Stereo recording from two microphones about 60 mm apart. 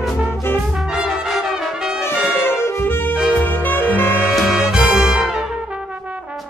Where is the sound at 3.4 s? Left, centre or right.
Left.